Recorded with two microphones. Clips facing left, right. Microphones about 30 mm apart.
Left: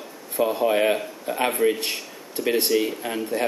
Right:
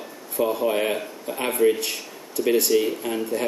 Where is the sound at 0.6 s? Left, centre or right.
Centre.